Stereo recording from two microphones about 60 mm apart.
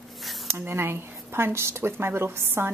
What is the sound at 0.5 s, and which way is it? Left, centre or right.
A woman's voice, right.